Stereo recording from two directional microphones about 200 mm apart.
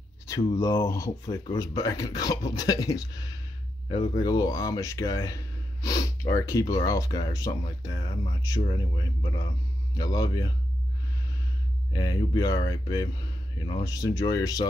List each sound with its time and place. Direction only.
0.4 s speech: 20° left (ahead or behind)
11.9 s speech: 20° left (ahead or behind)